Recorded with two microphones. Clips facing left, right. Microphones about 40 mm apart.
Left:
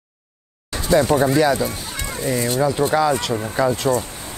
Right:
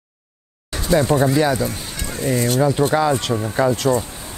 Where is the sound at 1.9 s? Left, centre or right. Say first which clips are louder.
Even; left.